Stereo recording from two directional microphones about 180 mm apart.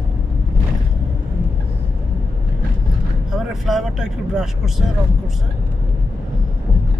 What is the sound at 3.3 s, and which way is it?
Speech, centre (ahead or behind).